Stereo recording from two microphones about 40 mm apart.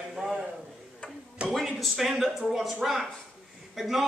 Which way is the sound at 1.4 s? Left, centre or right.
Right.